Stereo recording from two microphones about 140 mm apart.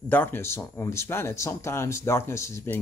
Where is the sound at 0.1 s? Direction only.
15° left (ahead or behind).